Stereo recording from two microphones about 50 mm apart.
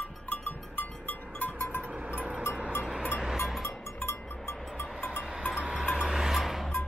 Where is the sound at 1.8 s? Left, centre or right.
Right.